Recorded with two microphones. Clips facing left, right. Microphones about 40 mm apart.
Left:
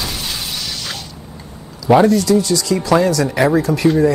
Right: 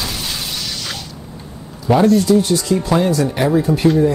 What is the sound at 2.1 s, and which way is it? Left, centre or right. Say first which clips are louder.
Speech: right 1 dB; left.